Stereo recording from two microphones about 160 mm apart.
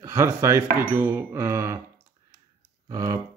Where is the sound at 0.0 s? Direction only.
15° right (ahead or behind).